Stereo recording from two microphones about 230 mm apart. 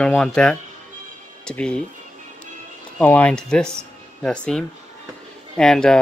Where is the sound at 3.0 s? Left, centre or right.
Centre.